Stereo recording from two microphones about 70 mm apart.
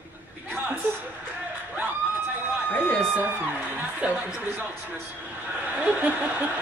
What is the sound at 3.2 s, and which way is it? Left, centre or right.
Speech, right.